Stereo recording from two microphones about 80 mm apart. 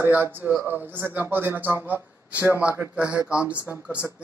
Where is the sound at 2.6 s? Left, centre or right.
Centre.